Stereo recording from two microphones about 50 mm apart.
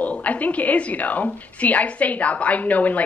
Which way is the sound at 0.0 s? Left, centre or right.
Left.